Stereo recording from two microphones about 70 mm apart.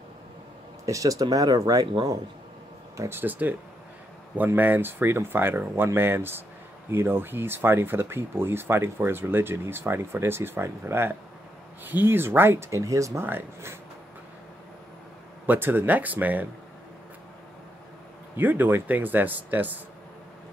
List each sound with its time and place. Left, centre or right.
0.8 s speech: right
3.1 s a man's voice: right
4.6 s speech: right
13.2 s speech: right
15.4 s a man's voice: right
18.3 s a man's voice: right